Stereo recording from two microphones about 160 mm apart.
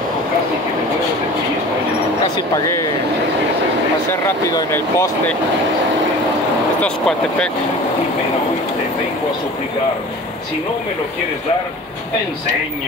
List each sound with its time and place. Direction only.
2.2 s speech: 25° left (ahead or behind)
4.1 s speech: 20° left (ahead or behind)
6.8 s speech: 5° left (ahead or behind)